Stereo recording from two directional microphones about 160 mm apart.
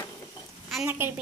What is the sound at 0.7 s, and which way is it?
Speech, 10° right (ahead or behind).